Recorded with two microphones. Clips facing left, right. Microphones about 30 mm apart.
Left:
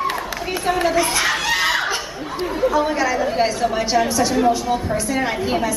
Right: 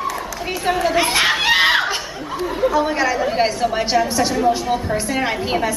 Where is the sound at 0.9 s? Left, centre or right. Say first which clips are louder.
Right 2 dB; right.